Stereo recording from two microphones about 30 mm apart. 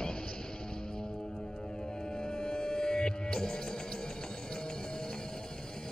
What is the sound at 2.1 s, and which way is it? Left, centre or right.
Music, left.